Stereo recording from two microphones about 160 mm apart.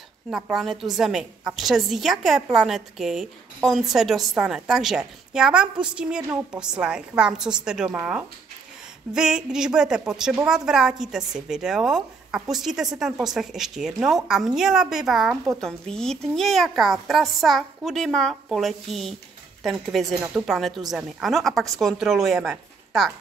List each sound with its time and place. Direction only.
0.3 s a woman's voice: 5° right (ahead or behind)